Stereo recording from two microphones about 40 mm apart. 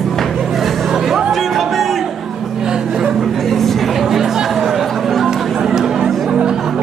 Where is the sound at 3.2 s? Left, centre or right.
Centre.